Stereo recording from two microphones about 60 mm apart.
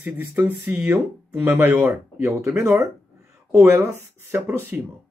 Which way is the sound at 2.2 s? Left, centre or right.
Right.